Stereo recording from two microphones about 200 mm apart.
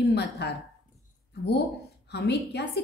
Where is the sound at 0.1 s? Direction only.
55° left (ahead or behind).